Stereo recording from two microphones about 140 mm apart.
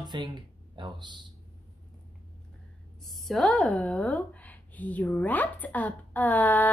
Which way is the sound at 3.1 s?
Centre (ahead or behind).